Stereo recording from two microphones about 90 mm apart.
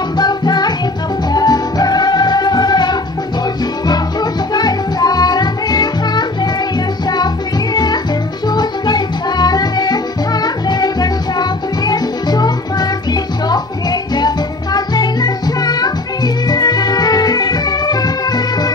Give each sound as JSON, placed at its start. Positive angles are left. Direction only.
{"t": 0.2, "sound": "music", "side_deg": 50}
{"t": 7.7, "sound": "music", "side_deg": 50}